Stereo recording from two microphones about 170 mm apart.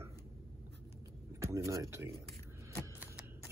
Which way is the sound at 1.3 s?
15° right (ahead or behind).